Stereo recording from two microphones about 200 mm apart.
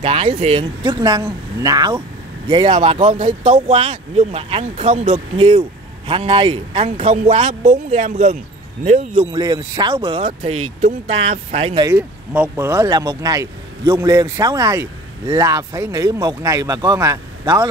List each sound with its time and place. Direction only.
0.0 s speech: 30° right (ahead or behind)
0.8 s speech: 20° right (ahead or behind)
9.2 s speech: 20° right (ahead or behind)
11.9 s speech: 10° right (ahead or behind)